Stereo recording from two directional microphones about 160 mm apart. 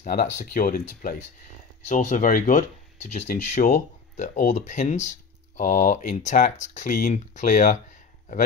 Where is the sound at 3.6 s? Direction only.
50° left (ahead or behind).